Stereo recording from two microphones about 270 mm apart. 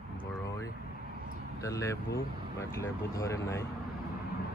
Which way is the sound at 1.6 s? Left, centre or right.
Centre.